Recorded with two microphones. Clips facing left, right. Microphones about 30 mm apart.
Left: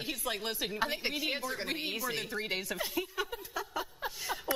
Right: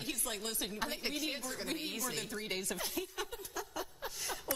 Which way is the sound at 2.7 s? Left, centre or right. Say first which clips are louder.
Left 4 dB; centre.